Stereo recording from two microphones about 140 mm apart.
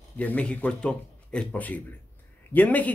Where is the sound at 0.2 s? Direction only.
10° left (ahead or behind).